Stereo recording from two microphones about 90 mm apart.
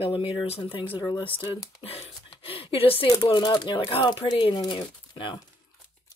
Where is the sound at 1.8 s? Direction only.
90° left.